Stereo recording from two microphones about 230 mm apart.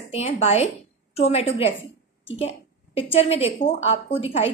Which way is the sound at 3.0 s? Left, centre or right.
Left.